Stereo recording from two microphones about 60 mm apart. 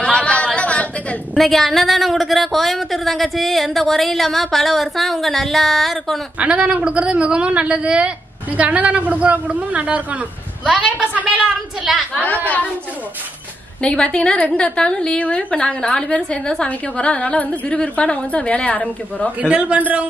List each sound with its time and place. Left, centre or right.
0.0 s a sound: centre
1.4 s speech: centre
6.4 s a man's voice: centre
11.8 s speech: centre
13.8 s a woman's voice: centre
19.4 s a woman's voice: right